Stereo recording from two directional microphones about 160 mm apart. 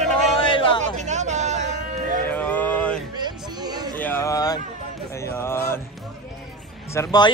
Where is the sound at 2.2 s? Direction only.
10° left (ahead or behind).